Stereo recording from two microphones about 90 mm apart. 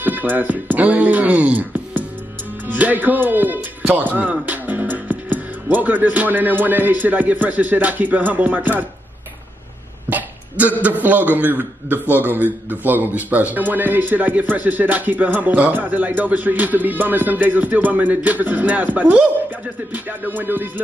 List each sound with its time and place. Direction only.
0.0 s a man's voice: 20° right (ahead or behind)
10.0 s a sound: 15° right (ahead or behind)
11.3 s a man's voice: 20° right (ahead or behind)